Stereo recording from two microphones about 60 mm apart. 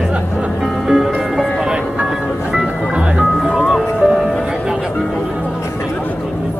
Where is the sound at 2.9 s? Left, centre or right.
Centre.